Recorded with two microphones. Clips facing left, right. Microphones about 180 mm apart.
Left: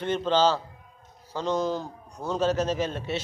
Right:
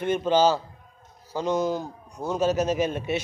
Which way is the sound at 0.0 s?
10° right (ahead or behind).